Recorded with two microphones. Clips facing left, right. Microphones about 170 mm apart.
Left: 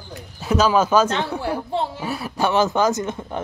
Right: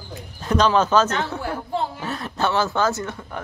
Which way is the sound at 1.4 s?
30° left (ahead or behind).